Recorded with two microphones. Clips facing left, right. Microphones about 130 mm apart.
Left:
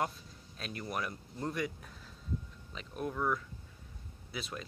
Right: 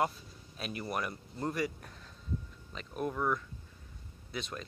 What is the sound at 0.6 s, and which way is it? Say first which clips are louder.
Speech: right 2 dB; 5° right (ahead or behind).